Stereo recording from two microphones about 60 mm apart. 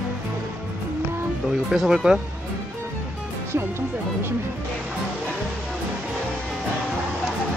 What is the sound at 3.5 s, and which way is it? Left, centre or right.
Speech, right.